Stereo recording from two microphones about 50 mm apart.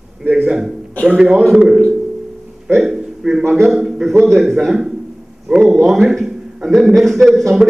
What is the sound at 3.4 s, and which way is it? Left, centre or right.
Speech, right.